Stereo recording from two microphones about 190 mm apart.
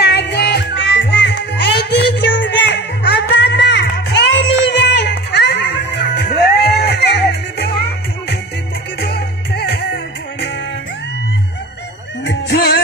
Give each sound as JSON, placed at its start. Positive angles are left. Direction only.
{"t": 0.0, "sound": "music", "side_deg": 60}
{"t": 9.0, "sound": "music", "side_deg": 60}
{"t": 12.3, "sound": "music", "side_deg": 65}